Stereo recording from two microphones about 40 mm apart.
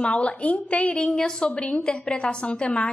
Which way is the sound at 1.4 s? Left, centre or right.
Left.